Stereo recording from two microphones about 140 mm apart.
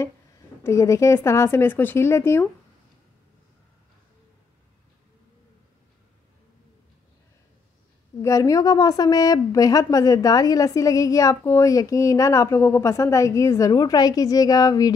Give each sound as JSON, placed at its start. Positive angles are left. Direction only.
{"t": 0.7, "sound": "a woman's voice", "side_deg": 20}
{"t": 8.2, "sound": "a woman's voice", "side_deg": 25}